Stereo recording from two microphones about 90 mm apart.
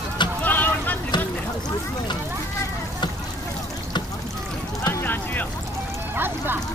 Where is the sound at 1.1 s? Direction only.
55° left (ahead or behind).